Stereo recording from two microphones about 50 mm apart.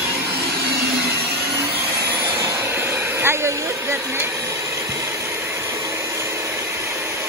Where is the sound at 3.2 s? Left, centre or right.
Right.